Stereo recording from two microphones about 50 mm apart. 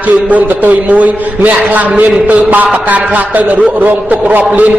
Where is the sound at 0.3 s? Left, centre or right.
Right.